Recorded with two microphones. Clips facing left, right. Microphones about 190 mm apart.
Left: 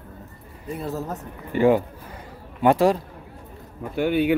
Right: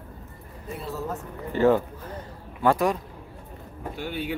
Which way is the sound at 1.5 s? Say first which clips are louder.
Left 2 dB; 15° left (ahead or behind).